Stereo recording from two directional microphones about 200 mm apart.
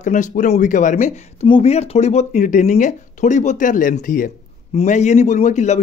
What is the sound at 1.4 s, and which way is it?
Speech, 30° left (ahead or behind).